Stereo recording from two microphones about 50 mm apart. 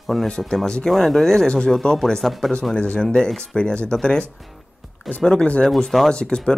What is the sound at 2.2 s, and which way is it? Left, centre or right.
Speech, centre.